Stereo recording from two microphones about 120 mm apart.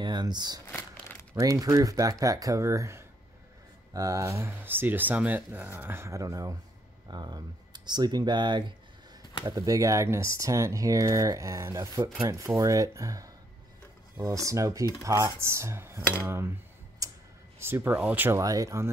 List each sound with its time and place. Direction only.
0.0 s speech: 40° right (ahead or behind); by 16.5 s 20° right (ahead or behind)
17.0 s a sound: 25° right (ahead or behind)
17.6 s speech: 20° right (ahead or behind)
18.4 s speech: 30° right (ahead or behind)